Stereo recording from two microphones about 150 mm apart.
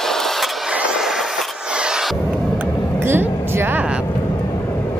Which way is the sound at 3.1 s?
15° right (ahead or behind).